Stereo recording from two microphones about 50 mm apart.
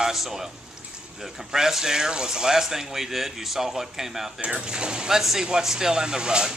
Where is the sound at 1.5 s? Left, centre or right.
Centre.